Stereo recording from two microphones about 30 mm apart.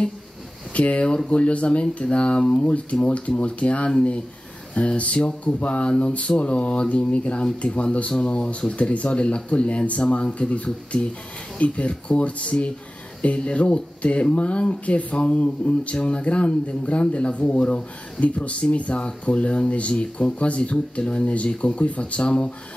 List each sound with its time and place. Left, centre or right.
0.7 s speech: left
5.9 s speech: left
6.1 s speech: left
17.6 s speech: left
18.2 s speech: left